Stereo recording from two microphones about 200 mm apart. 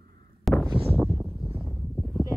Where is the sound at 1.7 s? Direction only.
Centre (ahead or behind).